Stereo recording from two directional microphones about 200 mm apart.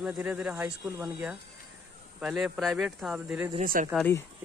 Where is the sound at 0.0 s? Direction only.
5° right (ahead or behind).